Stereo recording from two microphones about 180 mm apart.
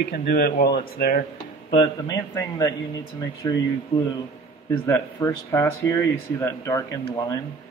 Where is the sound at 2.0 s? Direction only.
20° left (ahead or behind).